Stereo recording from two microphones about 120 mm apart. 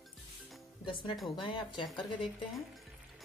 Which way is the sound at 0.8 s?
45° left (ahead or behind).